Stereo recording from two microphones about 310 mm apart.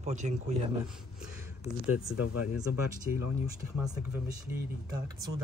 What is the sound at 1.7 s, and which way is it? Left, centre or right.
Speech, centre.